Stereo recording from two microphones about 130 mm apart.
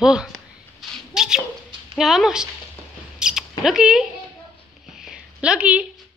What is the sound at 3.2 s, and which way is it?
Mouse, 5° right (ahead or behind).